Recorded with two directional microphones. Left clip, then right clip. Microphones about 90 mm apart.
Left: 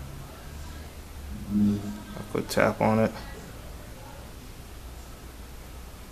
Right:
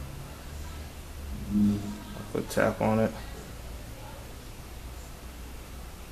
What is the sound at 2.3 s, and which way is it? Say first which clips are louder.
Speech: left 3 dB; 25° left (ahead or behind).